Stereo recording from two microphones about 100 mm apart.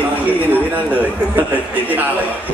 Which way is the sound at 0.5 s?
20° right (ahead or behind).